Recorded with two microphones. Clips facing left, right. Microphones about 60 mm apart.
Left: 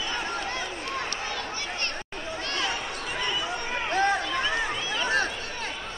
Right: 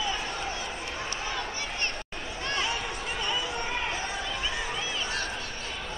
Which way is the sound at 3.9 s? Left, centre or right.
Left.